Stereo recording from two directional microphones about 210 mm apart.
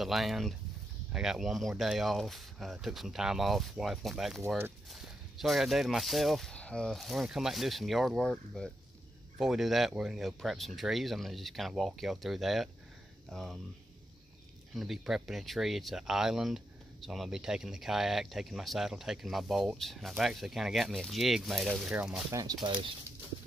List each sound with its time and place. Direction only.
0.0 s speech: centre (ahead or behind)
14.7 s speech: centre (ahead or behind)
22.3 s speech: 15° right (ahead or behind)